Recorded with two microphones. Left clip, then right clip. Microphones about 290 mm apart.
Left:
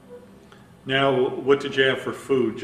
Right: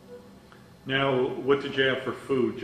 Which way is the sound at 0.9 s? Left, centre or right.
Centre.